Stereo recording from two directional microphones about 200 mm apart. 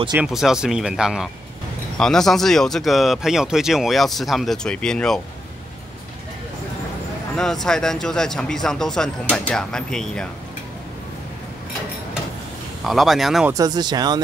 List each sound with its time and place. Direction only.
0.1 s speech: 5° right (ahead or behind)
7.3 s speech: 5° left (ahead or behind)
12.8 s speech: centre (ahead or behind)
13.5 s speech: 20° right (ahead or behind)